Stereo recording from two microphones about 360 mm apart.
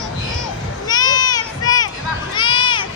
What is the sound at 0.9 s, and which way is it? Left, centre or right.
Children playing, centre.